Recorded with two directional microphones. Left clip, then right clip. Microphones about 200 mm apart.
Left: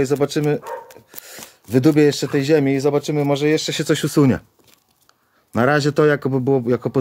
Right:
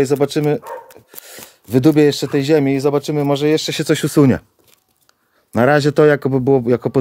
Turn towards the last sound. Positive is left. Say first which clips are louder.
# right 4 dB
turn(degrees=-40)  # may be behind; listen again after turning